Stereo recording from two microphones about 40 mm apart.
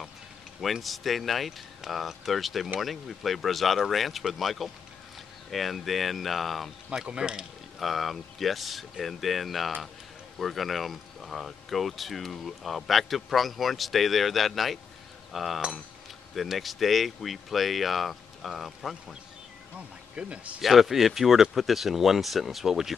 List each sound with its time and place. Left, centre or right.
0.6 s speech: centre
7.1 s speech: centre
7.8 s speech: centre
20.2 s speech: right
20.6 s speech: centre